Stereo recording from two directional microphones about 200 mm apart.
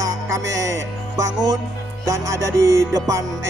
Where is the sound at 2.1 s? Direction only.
15° right (ahead or behind).